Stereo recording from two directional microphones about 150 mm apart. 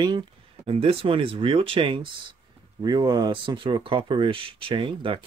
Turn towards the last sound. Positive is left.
turn(degrees=-35)  # may be behind; listen again after turning